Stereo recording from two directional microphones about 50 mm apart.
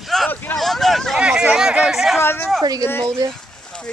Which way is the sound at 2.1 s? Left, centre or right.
Left.